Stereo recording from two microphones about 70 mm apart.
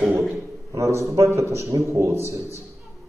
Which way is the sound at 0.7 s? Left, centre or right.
Right.